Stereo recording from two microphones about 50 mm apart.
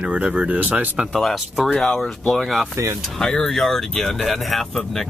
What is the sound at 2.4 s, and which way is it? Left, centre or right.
Speech, centre.